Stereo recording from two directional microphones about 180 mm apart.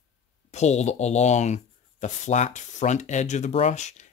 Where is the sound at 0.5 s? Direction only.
40° left (ahead or behind).